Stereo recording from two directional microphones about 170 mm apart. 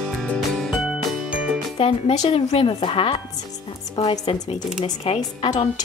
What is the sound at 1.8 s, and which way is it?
Speech, 35° left (ahead or behind).